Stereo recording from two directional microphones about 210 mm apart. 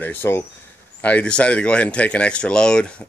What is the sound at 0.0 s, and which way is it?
Speech, 10° left (ahead or behind).